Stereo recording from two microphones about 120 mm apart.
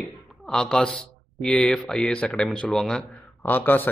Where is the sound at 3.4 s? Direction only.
15° left (ahead or behind).